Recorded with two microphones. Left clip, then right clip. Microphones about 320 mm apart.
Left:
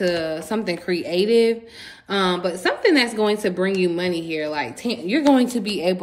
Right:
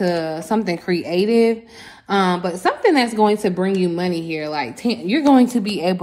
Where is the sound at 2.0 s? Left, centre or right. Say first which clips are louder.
Right 3 dB; centre.